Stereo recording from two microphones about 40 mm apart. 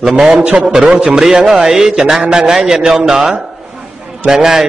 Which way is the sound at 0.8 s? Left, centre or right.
Right.